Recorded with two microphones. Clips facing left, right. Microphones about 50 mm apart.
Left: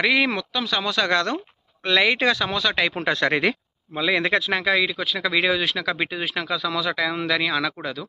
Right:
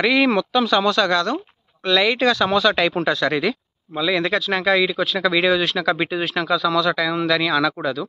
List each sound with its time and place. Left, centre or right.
0.0 s speech: centre
0.4 s speech: centre
1.0 s speech: left
2.4 s speech: centre
3.0 s speech: left
3.9 s speech: left
4.5 s speech: centre